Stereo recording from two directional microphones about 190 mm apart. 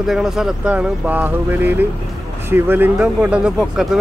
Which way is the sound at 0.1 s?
5° right (ahead or behind).